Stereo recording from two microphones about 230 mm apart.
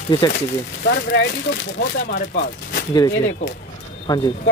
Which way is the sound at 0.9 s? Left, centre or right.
Left.